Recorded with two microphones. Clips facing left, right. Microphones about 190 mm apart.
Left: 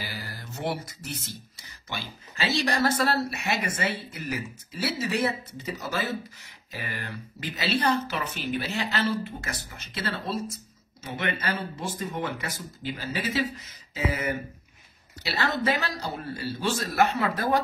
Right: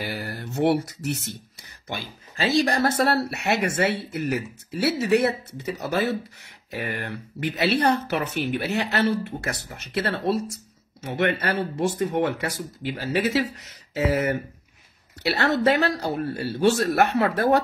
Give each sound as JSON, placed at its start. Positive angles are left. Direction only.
{"t": 0.0, "sound": "speech", "side_deg": -65}
{"t": 1.9, "sound": "speech", "side_deg": -45}
{"t": 3.0, "sound": "speech", "side_deg": -60}